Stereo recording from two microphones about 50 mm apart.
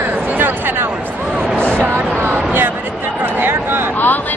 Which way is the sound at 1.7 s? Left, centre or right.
Right.